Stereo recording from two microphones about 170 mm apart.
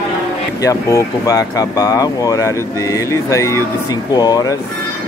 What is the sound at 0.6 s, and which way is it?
Speech, 20° left (ahead or behind).